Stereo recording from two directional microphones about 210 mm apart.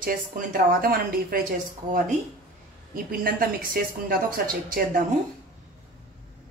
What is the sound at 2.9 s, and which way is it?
A woman's voice, 45° right (ahead or behind).